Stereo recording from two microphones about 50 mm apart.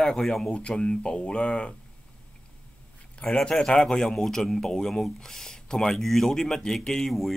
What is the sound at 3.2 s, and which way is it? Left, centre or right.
Speech, centre.